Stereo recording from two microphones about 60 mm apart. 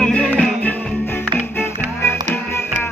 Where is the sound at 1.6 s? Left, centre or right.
Left.